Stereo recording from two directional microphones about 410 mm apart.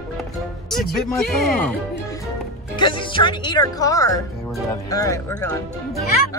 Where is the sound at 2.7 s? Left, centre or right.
Centre.